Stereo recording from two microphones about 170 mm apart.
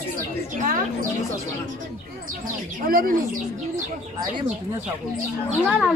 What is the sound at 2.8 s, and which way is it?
Speech, 60° right (ahead or behind).